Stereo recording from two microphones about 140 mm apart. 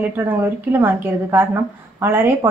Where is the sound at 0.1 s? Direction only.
15° right (ahead or behind).